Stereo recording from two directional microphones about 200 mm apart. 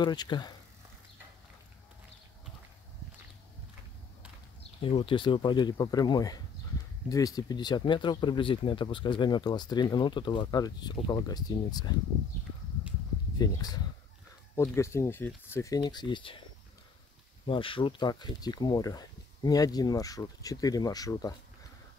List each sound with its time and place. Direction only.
0.0 s speech: 20° left (ahead or behind)
4.9 s speech: 25° left (ahead or behind)
13.4 s speech: 20° left (ahead or behind)
17.5 s speech: 25° left (ahead or behind)